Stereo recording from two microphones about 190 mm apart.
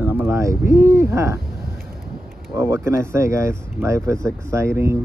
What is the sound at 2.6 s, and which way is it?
Speech, 15° right (ahead or behind).